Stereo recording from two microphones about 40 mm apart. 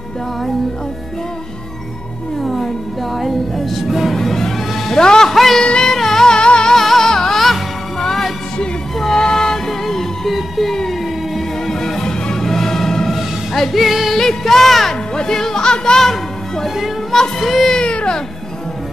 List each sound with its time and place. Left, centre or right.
2.4 s music: centre
5.3 s music: centre
5.6 s music: centre
6.7 s music: centre
14.1 s music: centre
17.1 s child singing: centre
17.7 s baby cry: left